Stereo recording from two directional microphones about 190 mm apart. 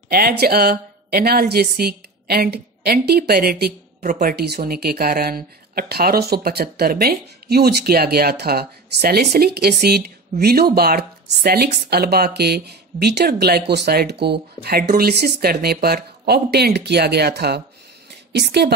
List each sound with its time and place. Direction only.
0.1 s a woman's voice: 55° right (ahead or behind)